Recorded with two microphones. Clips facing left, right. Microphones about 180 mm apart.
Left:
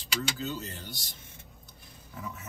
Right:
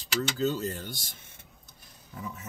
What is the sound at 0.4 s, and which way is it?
Speech, 45° right (ahead or behind).